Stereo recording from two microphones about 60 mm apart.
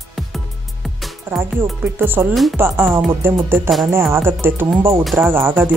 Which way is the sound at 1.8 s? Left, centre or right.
Right.